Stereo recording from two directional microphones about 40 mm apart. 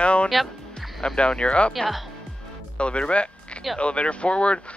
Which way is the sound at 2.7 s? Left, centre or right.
Left.